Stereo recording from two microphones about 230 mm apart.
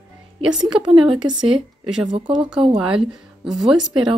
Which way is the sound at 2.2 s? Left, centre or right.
Centre.